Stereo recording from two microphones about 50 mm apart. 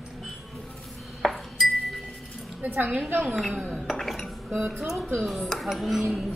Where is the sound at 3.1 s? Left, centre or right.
Right.